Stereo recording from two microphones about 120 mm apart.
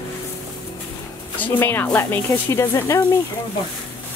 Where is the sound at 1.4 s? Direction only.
15° left (ahead or behind).